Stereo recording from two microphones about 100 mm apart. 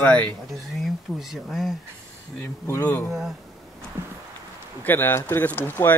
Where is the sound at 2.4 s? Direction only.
20° left (ahead or behind).